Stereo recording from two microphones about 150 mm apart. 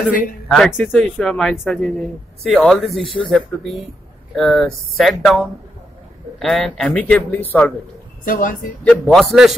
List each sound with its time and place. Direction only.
0.5 s speech: centre (ahead or behind)
2.9 s speech: 35° left (ahead or behind)
3.2 s speech: 5° left (ahead or behind)
8.3 s speech: 65° left (ahead or behind)
8.8 s speech: 5° left (ahead or behind)